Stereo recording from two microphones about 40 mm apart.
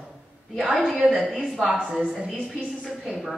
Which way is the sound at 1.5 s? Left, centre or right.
Centre.